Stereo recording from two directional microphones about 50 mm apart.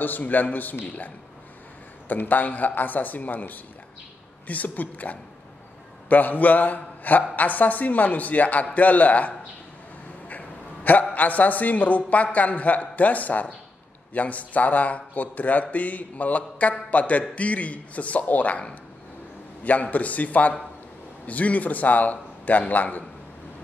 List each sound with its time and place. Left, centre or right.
0.0 s a man's voice: left
10.2 s a sound: left
11.1 s speech: left